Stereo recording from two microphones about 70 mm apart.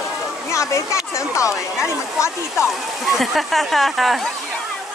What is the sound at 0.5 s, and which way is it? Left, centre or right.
Speech, left.